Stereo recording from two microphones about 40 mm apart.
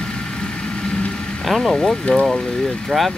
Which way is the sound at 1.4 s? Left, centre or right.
Centre.